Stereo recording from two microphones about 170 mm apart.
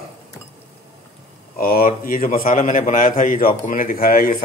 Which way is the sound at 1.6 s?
60° left (ahead or behind).